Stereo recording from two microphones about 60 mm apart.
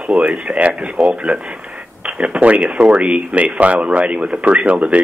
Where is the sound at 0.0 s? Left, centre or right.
Right.